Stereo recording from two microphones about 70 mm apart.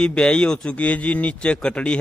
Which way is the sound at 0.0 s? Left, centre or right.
Centre.